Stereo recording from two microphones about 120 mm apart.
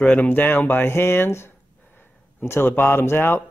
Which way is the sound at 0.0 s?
15° left (ahead or behind).